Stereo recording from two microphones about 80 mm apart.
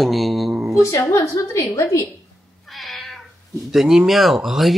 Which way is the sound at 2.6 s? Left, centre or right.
Centre.